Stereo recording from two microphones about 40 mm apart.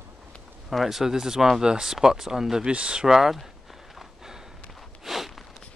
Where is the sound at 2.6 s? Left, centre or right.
Right.